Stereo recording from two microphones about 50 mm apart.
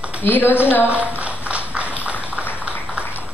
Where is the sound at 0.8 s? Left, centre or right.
Right.